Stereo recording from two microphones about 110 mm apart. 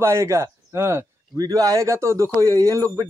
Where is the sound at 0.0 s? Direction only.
25° right (ahead or behind).